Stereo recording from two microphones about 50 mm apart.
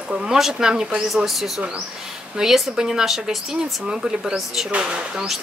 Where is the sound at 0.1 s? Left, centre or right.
Centre.